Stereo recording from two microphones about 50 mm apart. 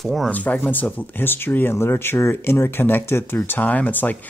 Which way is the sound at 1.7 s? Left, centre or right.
Left.